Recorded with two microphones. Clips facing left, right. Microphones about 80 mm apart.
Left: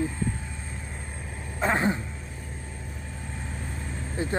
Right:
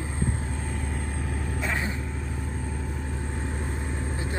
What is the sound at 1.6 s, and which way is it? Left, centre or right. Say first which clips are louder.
Speech: left 7 dB; left.